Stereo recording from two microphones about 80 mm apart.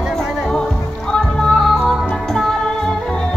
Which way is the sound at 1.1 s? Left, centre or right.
Centre.